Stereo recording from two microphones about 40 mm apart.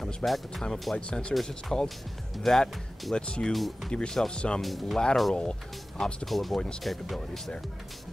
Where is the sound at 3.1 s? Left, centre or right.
Left.